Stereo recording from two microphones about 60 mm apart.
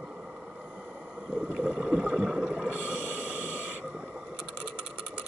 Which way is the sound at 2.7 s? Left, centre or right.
Right.